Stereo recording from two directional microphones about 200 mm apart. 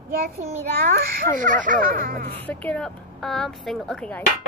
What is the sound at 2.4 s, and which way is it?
Speech, 5° left (ahead or behind).